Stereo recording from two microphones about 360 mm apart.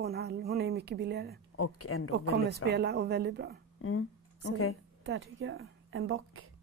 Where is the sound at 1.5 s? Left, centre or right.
Left.